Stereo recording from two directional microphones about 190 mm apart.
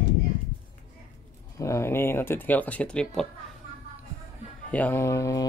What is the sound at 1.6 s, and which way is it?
Speech, 15° left (ahead or behind).